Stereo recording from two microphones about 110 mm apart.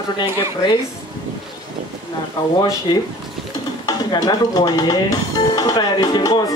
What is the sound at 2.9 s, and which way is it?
Speech, 40° left (ahead or behind).